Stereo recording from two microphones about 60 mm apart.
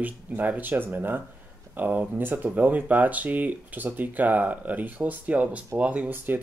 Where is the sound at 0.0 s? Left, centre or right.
Right.